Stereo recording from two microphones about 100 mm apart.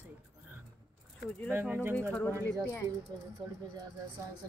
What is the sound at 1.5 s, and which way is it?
Speech, 20° right (ahead or behind).